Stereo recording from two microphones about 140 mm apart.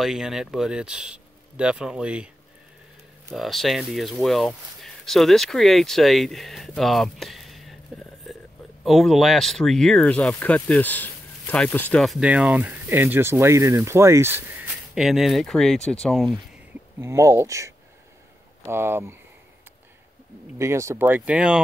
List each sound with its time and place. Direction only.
0.0 s speech: centre (ahead or behind)
3.3 s speech: centre (ahead or behind)
12.0 s speech: 5° right (ahead or behind)
15.0 s speech: centre (ahead or behind)
17.0 s speech: 20° right (ahead or behind)
20.5 s speech: 20° right (ahead or behind)